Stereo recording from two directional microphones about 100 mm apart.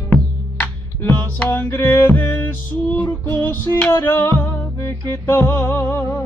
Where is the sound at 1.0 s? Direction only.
20° left (ahead or behind).